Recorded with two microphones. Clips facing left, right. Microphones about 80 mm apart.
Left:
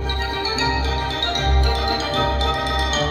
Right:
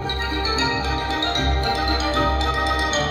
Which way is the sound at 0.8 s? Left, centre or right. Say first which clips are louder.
Right 1 dB; right.